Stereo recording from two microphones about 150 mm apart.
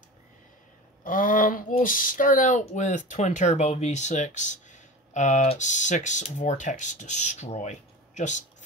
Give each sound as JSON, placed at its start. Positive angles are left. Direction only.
{"t": 1.0, "sound": "speech", "side_deg": 65}